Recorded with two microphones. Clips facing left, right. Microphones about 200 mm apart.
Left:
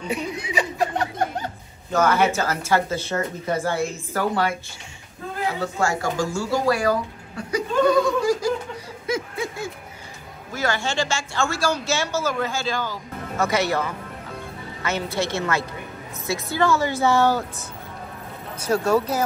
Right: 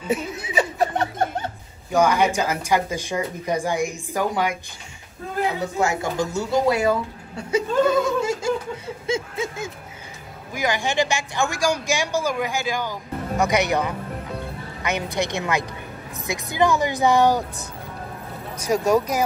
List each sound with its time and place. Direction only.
0.0 s speech: 5° right (ahead or behind)
1.9 s a woman's voice: 15° right (ahead or behind)
7.5 s laughter: 25° right (ahead or behind)
10.5 s a woman's voice: 15° right (ahead or behind)
18.7 s a woman's voice: 15° right (ahead or behind)